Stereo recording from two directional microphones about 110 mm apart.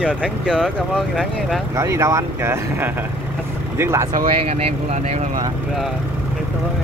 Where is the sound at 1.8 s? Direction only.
25° right (ahead or behind).